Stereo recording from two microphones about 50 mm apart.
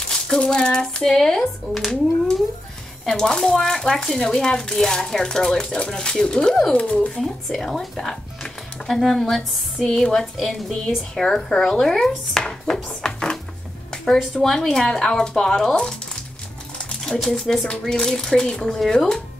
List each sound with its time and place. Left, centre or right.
0.1 s speech: centre
3.1 s speech: centre
6.7 s speech: left
7.2 s speech: centre
12.4 s chopping: centre
14.3 s speech: centre
17.0 s speech: centre